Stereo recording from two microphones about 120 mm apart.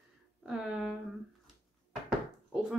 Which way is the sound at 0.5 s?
5° right (ahead or behind).